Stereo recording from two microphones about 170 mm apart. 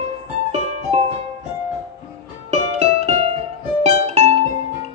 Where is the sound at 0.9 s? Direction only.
40° right (ahead or behind).